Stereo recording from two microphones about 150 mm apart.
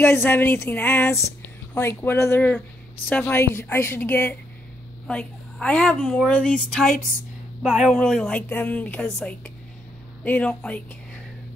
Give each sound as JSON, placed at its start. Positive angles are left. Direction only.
{"t": 0.0, "sound": "a woman's voice", "side_deg": 15}
{"t": 7.9, "sound": "a woman's voice", "side_deg": 5}